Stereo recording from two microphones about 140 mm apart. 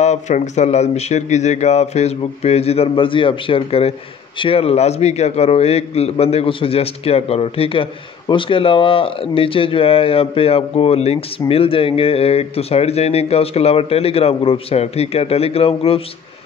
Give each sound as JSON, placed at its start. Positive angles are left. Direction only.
{"t": 0.0, "sound": "a man's voice", "side_deg": 55}